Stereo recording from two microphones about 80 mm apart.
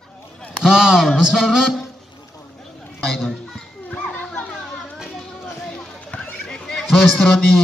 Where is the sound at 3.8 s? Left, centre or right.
Left.